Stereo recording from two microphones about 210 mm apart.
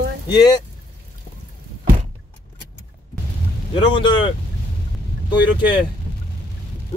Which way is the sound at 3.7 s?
25° left (ahead or behind).